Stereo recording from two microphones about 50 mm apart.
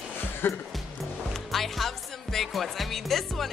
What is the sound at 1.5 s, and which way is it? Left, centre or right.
Speech, centre.